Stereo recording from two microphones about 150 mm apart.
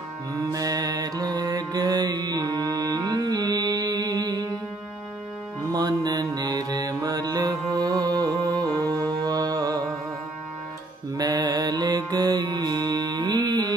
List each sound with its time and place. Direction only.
0.5 s mantra: 25° right (ahead or behind)
5.7 s mantra: 25° right (ahead or behind)
11.1 s music: 25° right (ahead or behind)